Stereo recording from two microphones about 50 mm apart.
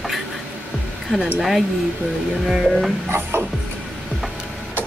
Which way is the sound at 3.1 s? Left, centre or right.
Right.